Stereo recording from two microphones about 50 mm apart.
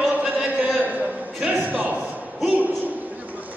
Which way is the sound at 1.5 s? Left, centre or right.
Right.